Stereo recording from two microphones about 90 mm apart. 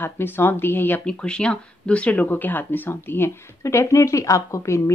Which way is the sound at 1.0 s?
10° left (ahead or behind).